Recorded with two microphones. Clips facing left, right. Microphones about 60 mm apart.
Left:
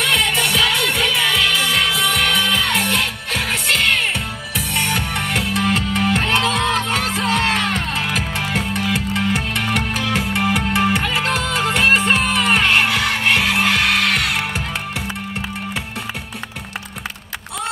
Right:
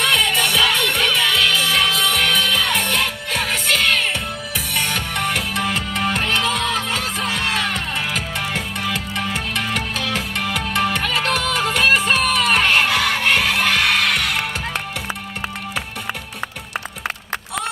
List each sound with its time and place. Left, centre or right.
0.0 s music: centre
7.7 s music: centre